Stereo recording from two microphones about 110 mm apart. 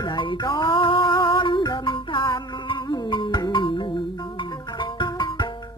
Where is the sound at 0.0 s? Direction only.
45° left (ahead or behind).